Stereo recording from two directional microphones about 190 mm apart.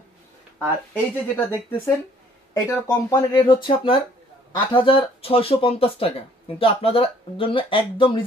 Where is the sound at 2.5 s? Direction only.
15° left (ahead or behind).